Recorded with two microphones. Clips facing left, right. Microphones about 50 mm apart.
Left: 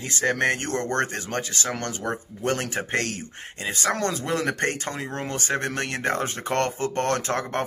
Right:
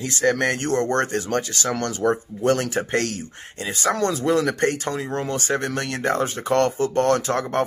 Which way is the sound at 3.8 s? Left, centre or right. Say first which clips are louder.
Right 5 dB; left.